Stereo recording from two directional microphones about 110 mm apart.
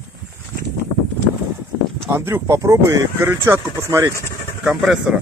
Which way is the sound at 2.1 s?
25° right (ahead or behind).